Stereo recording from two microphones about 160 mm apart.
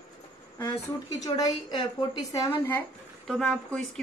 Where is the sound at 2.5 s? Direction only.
10° left (ahead or behind).